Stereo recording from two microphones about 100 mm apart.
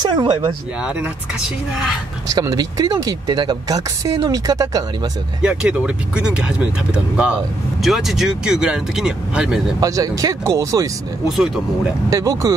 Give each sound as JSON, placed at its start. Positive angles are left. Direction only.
{"t": 0.0, "sound": "speech", "side_deg": -50}
{"t": 0.8, "sound": "speech", "side_deg": -15}
{"t": 2.2, "sound": "speech", "side_deg": -40}
{"t": 5.4, "sound": "speech", "side_deg": -10}
{"t": 9.8, "sound": "speech", "side_deg": -35}
{"t": 11.2, "sound": "speech", "side_deg": -5}
{"t": 12.1, "sound": "speech", "side_deg": -35}